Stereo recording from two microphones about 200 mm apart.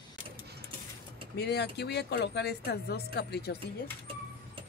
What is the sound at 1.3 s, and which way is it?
Speech, 55° left (ahead or behind).